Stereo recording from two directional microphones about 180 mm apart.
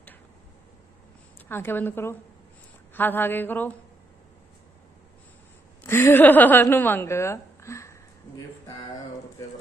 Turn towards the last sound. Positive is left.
turn(degrees=15)  # may be behind; listen again after turning